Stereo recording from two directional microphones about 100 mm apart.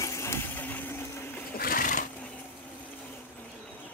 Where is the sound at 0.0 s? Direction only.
30° left (ahead or behind).